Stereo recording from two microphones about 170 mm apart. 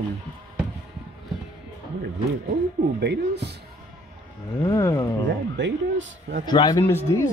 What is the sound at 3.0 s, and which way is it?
Speech, 80° right.